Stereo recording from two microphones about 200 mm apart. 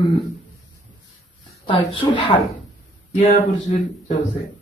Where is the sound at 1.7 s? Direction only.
25° left (ahead or behind).